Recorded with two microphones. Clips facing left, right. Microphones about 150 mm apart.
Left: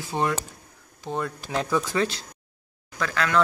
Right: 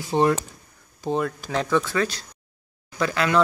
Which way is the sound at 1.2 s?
Centre (ahead or behind).